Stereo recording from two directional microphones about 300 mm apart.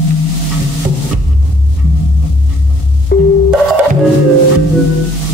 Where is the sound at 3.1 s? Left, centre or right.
Left.